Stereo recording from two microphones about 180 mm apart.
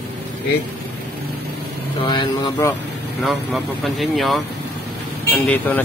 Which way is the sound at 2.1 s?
25° left (ahead or behind).